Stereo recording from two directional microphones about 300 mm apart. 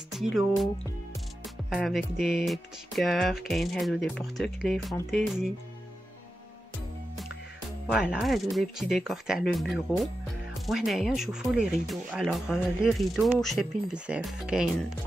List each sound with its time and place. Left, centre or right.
0.1 s speech: centre
7.9 s speech: centre